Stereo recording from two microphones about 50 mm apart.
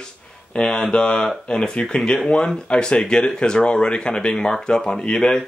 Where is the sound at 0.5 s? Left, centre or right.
Left.